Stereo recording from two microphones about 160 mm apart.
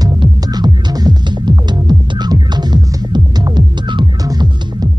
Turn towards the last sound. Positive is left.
turn(degrees=-25)  # may be behind; listen again after turning